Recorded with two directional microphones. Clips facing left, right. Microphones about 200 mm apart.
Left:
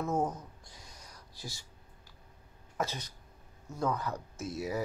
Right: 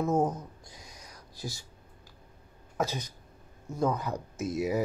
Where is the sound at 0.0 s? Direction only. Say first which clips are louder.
Right 5 dB; 20° right (ahead or behind).